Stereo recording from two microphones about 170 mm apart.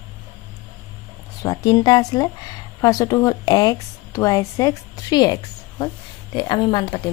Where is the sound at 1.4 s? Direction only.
20° left (ahead or behind).